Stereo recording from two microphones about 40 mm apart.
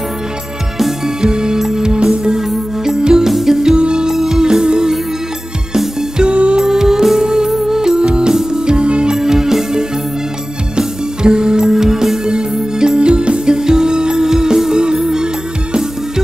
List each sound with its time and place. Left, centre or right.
0.7 s music: centre
1.2 s music: centre
6.1 s music: right
9.1 s music: centre